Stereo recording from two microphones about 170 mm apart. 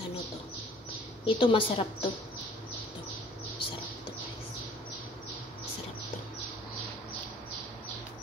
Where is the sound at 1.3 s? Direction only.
30° left (ahead or behind).